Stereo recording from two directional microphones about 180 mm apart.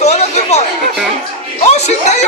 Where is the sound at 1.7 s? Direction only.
40° left (ahead or behind).